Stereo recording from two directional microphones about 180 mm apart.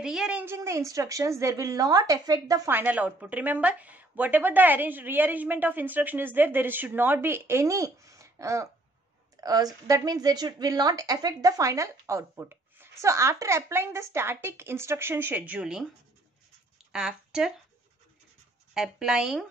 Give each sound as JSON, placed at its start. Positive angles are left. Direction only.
{"t": 0.0, "sound": "a woman's voice", "side_deg": -5}
{"t": 16.9, "sound": "speech", "side_deg": -5}
{"t": 18.7, "sound": "speech", "side_deg": 0}